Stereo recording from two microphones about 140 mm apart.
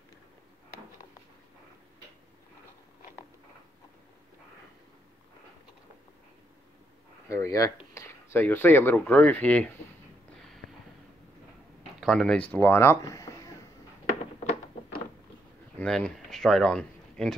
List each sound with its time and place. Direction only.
7.2 s speech: 20° left (ahead or behind)
12.0 s speech: centre (ahead or behind); by 13.3 s 20° left (ahead or behind)
15.8 s a sound: 5° left (ahead or behind)